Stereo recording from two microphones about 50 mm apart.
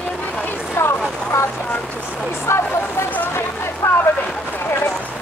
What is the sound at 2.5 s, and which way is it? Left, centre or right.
Vehicle, left.